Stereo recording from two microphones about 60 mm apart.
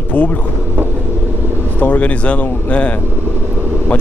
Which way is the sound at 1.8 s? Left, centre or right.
Left.